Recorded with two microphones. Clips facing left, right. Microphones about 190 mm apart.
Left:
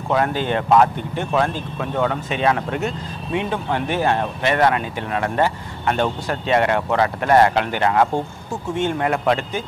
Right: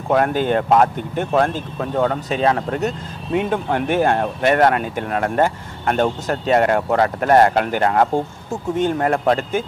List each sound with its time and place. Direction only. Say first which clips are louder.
0.1 s speech: right 3 dB; 50° right (ahead or behind)
3.3 s speech: right 3 dB; 50° right (ahead or behind)